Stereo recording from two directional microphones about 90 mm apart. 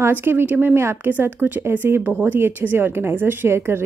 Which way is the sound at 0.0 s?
25° right (ahead or behind).